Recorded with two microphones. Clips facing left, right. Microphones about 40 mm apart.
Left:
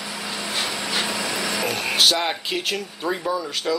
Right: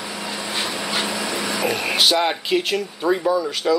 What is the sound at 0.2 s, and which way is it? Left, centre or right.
Vehicle, centre.